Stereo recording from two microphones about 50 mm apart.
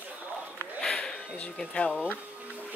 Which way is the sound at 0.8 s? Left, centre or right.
Centre.